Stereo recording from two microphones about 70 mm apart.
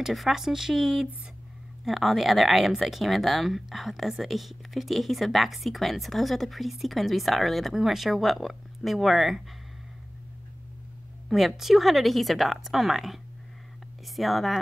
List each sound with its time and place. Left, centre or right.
0.0 s speech: centre
11.2 s speech: centre